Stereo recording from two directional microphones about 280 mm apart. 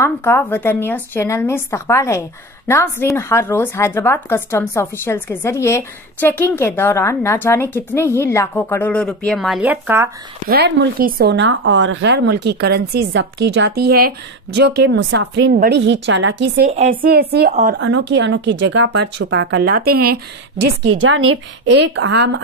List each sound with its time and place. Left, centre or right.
0.0 s a woman's voice: centre
10.5 s a woman's voice: right
21.0 s a woman's voice: right
21.8 s a woman's voice: right